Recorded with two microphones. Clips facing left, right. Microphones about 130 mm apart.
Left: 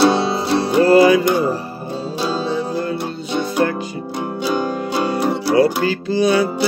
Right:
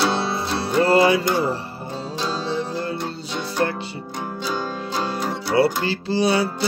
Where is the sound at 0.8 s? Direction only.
25° right (ahead or behind).